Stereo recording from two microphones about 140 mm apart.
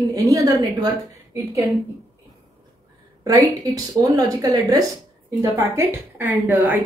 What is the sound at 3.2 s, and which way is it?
A woman's voice, 25° right (ahead or behind).